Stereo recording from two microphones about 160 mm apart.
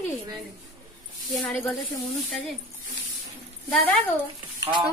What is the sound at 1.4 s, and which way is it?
Speech, centre (ahead or behind).